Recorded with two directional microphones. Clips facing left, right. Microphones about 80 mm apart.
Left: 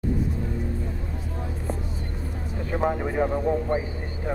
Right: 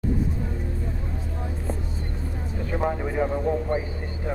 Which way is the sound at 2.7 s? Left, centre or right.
Left.